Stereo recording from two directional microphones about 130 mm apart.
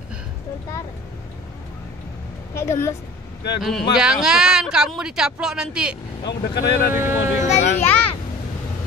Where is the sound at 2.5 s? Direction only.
20° left (ahead or behind).